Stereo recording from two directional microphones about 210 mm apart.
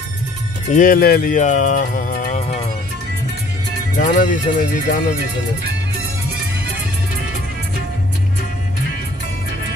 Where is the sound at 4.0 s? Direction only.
35° left (ahead or behind).